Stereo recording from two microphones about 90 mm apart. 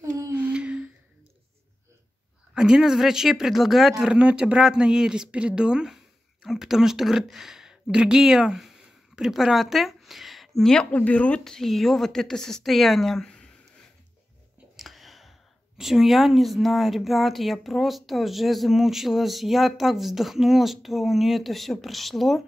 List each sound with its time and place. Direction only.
0.3 s a sound: 15° right (ahead or behind)
2.5 s speech: 10° right (ahead or behind); by 13.5 s 5° left (ahead or behind)
14.8 s whispering: centre (ahead or behind)
15.8 s speech: centre (ahead or behind)